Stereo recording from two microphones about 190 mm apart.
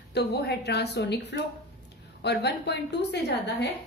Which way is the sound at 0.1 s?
60° left (ahead or behind).